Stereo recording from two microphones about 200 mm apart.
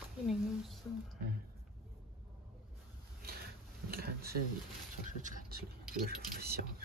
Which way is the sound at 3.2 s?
50° right (ahead or behind).